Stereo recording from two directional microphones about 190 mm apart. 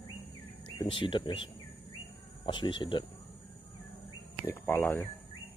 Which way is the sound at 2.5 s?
25° left (ahead or behind).